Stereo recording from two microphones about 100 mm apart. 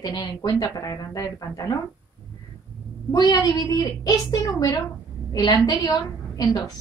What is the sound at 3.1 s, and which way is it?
A woman's voice, 40° left (ahead or behind).